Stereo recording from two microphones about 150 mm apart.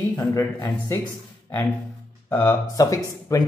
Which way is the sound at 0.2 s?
25° left (ahead or behind).